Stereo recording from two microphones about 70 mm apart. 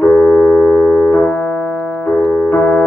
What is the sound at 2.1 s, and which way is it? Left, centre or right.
Piano, left.